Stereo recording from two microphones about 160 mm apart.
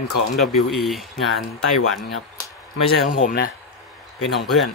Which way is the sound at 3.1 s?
60° left (ahead or behind).